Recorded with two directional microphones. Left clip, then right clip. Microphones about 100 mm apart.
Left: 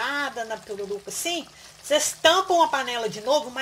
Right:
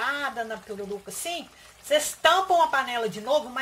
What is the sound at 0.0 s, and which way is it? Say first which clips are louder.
Frying: left 1 dB; 60° left (ahead or behind).